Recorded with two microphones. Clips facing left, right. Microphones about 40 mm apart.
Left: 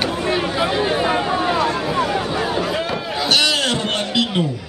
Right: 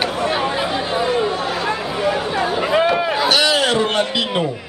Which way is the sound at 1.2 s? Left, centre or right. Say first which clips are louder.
Left 1 dB; centre.